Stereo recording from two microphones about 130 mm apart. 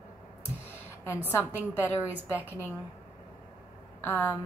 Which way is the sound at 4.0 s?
15° left (ahead or behind).